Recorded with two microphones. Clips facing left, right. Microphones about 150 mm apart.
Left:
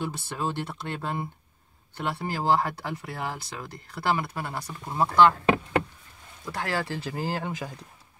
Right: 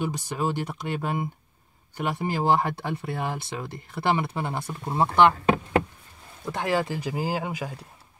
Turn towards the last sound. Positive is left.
turn(degrees=-10)  # may be behind; listen again after turning